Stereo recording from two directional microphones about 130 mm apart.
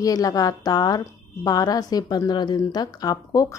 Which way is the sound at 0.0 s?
30° left (ahead or behind).